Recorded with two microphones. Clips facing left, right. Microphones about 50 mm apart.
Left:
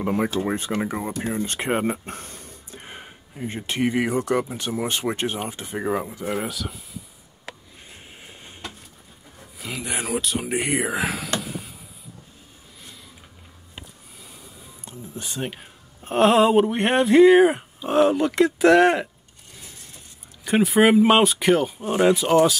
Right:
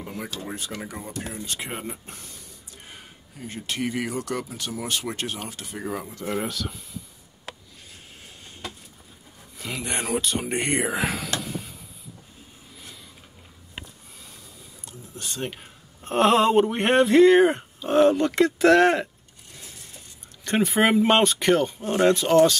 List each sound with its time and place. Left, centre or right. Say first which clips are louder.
0.3 s speech: left 9 dB; left; by 7.0 s centre
7.9 s train: left 3 dB; left
9.6 s speech: even; centre
11.4 s a sound: even; centre
14.9 s speech: left 2 dB; centre
20.4 s speech: left 4 dB; centre